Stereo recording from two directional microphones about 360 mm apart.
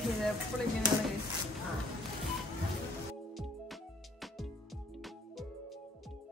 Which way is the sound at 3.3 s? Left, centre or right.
Centre.